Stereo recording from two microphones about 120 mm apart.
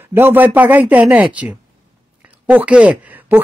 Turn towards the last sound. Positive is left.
turn(degrees=-15)  # may be behind; listen again after turning